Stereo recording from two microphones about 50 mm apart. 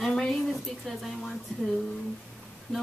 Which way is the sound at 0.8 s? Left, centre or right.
Centre.